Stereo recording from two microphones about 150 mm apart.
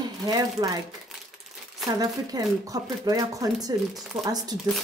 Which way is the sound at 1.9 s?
25° right (ahead or behind).